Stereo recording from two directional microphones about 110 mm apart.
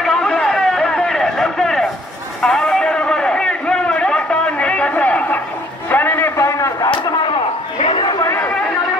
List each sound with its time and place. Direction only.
0.0 s a sound: 5° left (ahead or behind); by 6.9 s 25° left (ahead or behind)
7.8 s chatter: 55° left (ahead or behind)
8.2 s chatter: 25° left (ahead or behind)